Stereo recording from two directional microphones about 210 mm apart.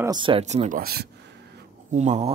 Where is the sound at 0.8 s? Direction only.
45° right (ahead or behind).